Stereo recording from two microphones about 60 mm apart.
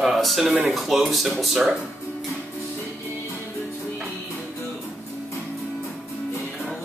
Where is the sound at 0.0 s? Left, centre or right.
Centre.